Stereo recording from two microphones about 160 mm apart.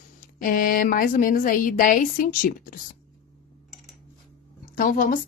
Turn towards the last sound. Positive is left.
turn(degrees=60)  # may be behind; listen again after turning